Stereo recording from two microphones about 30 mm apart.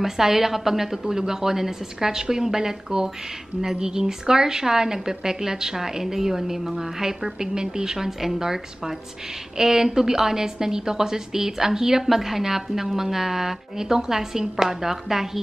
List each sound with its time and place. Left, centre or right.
0.0 s a woman's voice: centre